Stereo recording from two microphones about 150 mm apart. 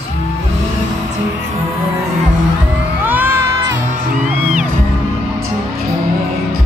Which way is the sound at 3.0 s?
15° right (ahead or behind).